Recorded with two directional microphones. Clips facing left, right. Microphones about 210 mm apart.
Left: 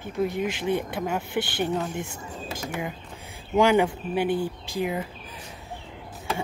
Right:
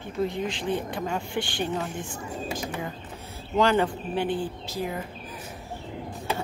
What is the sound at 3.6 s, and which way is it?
Speech, 10° left (ahead or behind).